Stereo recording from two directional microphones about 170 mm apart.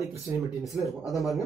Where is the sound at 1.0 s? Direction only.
Centre (ahead or behind).